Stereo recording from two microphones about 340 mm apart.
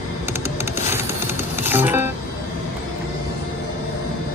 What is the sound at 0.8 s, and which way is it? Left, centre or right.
Music, centre.